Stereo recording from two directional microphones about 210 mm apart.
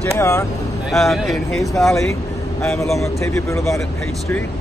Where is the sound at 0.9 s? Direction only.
Centre (ahead or behind).